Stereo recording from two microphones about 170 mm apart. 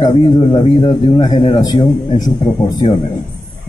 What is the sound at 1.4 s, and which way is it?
Speech, 25° left (ahead or behind).